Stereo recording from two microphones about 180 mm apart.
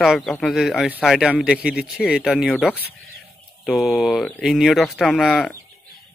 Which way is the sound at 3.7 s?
Centre (ahead or behind).